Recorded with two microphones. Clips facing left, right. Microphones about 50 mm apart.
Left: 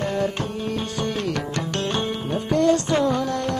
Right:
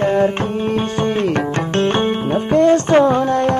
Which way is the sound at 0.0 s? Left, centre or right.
Right.